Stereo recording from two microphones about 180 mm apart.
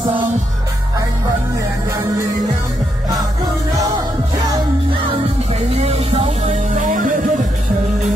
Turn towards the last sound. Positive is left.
turn(degrees=-45)  # may be behind; listen again after turning